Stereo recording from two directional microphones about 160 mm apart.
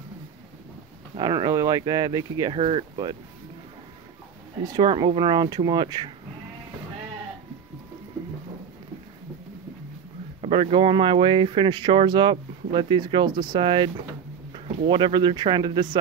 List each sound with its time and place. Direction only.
1.1 s speech: 25° right (ahead or behind)
4.7 s speech: 30° right (ahead or behind)
10.4 s speech: 35° right (ahead or behind)